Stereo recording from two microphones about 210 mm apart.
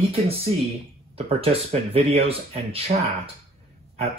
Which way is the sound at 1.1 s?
30° right (ahead or behind).